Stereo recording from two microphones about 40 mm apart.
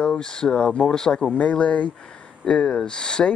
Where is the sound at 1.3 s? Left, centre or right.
Left.